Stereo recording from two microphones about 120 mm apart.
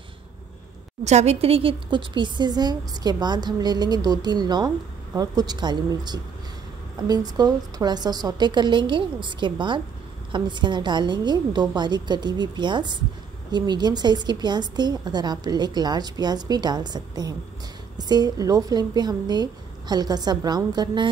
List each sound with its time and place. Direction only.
1.0 s speech: 70° right (ahead or behind); by 21.1 s 35° right (ahead or behind)